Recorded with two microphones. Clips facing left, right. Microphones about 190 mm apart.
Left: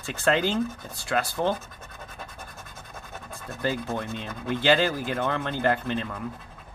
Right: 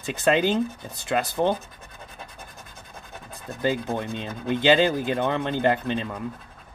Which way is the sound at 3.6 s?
15° right (ahead or behind).